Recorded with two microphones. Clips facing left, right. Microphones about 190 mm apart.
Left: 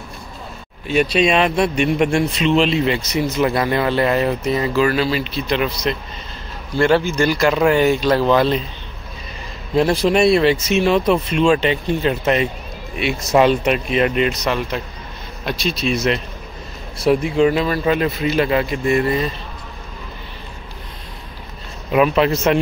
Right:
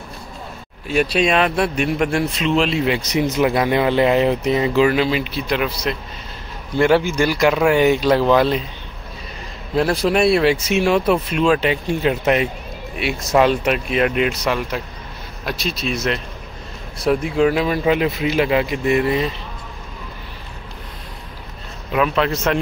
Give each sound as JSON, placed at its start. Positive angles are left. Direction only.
{"t": 0.8, "sound": "a man's voice", "side_deg": -5}
{"t": 9.8, "sound": "a man's voice", "side_deg": 0}
{"t": 21.9, "sound": "a man's voice", "side_deg": 10}